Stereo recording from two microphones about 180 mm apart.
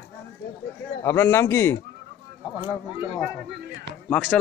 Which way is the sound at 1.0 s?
10° left (ahead or behind).